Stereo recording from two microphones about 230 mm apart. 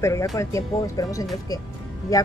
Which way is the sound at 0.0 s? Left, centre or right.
Centre.